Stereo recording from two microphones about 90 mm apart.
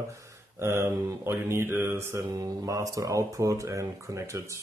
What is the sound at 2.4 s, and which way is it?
Speech, 40° right (ahead or behind).